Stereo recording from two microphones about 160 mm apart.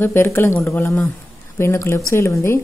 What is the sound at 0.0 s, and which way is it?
Speech, 15° left (ahead or behind).